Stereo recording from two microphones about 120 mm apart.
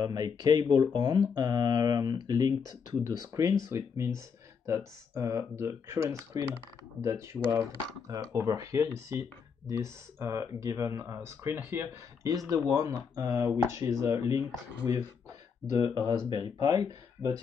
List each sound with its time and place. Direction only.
0.0 s speech: 35° right (ahead or behind)